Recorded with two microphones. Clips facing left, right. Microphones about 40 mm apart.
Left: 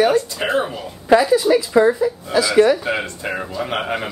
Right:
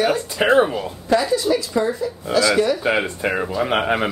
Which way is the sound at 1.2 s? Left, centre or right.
Centre.